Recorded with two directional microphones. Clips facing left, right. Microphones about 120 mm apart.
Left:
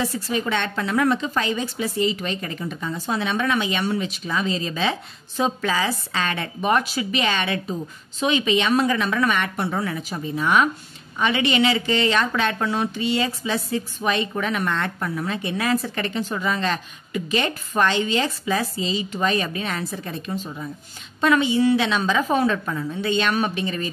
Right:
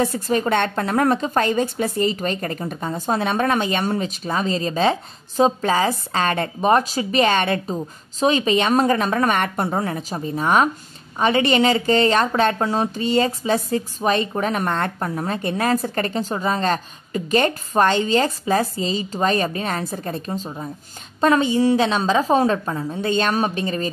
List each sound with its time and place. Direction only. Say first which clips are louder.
0.3 s a woman's voice: right 6 dB; 45° right (ahead or behind)